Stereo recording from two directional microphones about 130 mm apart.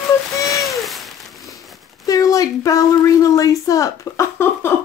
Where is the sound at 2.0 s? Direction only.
25° left (ahead or behind).